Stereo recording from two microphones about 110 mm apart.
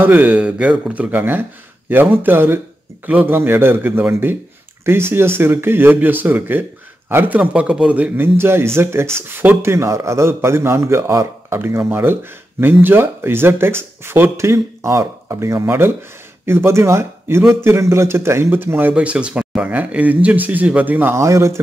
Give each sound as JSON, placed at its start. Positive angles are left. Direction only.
{"t": 0.0, "sound": "a man's voice", "side_deg": -15}